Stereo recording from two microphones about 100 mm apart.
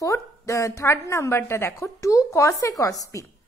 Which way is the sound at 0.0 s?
30° left (ahead or behind).